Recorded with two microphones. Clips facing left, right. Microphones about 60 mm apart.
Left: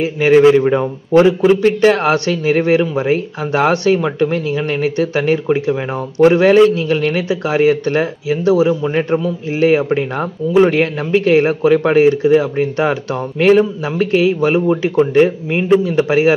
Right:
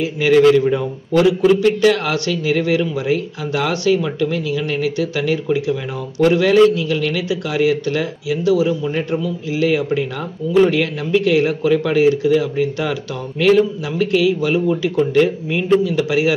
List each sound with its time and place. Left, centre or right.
0.0 s a man's voice: left